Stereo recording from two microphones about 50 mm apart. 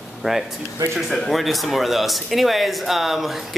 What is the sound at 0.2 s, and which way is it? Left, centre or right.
Speech, centre.